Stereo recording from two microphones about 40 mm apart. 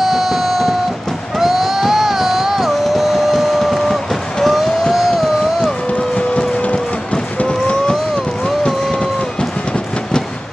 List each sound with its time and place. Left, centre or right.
0.0 s a sound: centre
1.4 s music: centre
2.8 s vehicle: centre
5.9 s run: left